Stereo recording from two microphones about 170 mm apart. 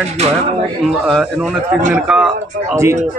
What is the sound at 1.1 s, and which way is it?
Speech, centre (ahead or behind).